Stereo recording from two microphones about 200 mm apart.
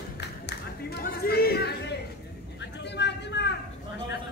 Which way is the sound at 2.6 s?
60° left (ahead or behind).